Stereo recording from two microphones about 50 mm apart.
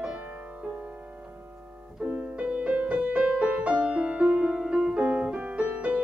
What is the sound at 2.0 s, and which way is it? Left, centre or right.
Music, right.